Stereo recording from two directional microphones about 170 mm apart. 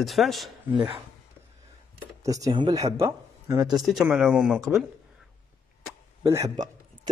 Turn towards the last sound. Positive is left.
turn(degrees=-20)  # may be behind; listen again after turning